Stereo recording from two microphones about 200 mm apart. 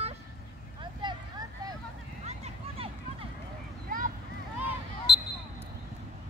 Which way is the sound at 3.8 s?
45° right (ahead or behind).